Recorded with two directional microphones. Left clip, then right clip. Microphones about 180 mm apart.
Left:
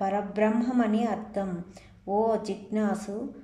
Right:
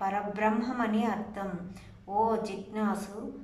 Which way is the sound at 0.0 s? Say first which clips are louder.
Left 3 dB; 30° left (ahead or behind).